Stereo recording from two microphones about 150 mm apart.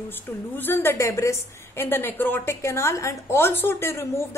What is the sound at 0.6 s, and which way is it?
A woman's voice, 15° left (ahead or behind).